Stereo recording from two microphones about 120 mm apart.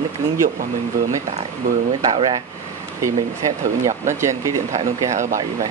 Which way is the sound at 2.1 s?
45° right (ahead or behind).